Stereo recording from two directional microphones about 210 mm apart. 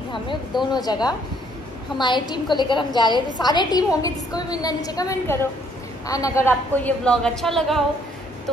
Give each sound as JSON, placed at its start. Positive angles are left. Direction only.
{"t": 0.7, "sound": "a woman's voice", "side_deg": 20}